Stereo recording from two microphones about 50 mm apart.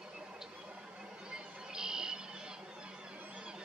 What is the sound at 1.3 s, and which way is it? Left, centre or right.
Music, centre.